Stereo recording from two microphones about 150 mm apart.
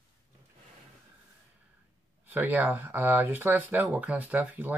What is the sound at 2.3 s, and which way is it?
Speech, 10° right (ahead or behind).